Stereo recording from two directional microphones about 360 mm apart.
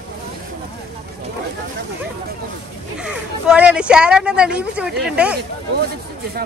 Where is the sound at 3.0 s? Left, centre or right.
Centre.